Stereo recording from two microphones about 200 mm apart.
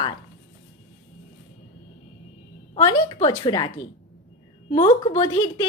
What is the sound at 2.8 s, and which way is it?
Speech, 20° left (ahead or behind).